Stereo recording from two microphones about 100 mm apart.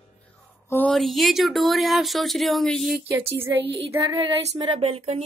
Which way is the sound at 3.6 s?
70° right (ahead or behind).